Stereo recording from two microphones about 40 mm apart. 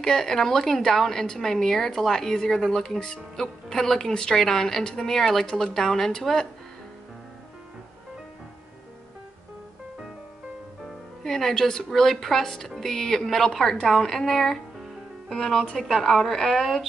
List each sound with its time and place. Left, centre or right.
0.0 s a woman's voice: centre
11.2 s a woman's voice: centre